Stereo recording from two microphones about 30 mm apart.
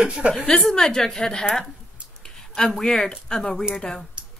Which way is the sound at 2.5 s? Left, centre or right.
Centre.